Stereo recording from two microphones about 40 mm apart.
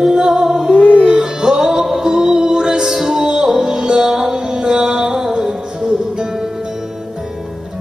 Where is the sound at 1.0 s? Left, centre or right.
Right.